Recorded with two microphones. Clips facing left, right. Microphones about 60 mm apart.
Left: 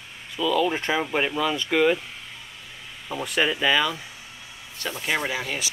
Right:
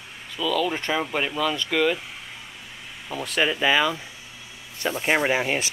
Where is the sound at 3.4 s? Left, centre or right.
Centre.